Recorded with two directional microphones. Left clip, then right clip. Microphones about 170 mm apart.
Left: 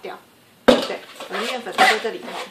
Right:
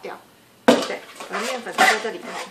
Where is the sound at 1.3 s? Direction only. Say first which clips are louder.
Left 1 dB; 5° left (ahead or behind).